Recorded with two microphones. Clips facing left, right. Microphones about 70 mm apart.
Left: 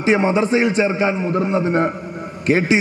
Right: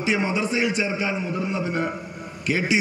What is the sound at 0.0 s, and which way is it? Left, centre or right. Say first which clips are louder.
A man's voice: left 7 dB; left.